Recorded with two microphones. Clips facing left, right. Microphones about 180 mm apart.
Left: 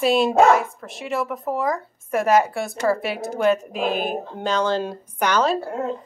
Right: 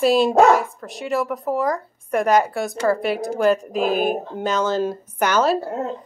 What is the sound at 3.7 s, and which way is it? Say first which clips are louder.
Speech: right 4 dB; 45° right (ahead or behind).